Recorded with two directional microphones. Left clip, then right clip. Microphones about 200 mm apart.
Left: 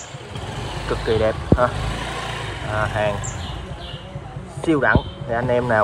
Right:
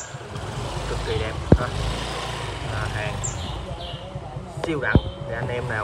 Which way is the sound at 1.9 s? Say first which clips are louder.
Left 2 dB; centre (ahead or behind).